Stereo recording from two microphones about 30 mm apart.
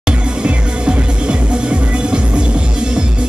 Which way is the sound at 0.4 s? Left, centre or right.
Right.